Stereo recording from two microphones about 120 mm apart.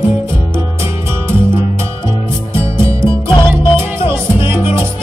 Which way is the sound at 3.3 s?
45° left (ahead or behind).